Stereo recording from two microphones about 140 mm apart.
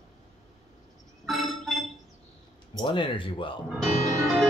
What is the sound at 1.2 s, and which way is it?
Music, centre (ahead or behind).